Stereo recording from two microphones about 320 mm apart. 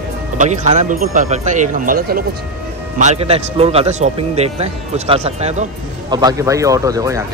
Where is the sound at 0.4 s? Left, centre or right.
Right.